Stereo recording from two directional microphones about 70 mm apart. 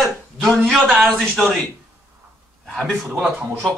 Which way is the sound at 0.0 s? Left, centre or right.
Centre.